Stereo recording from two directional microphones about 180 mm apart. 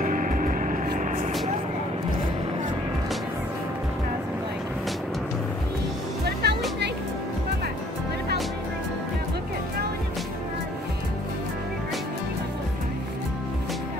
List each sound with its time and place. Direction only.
0.0 s vehicle: 50° right (ahead or behind)
6.4 s music: 65° right (ahead or behind)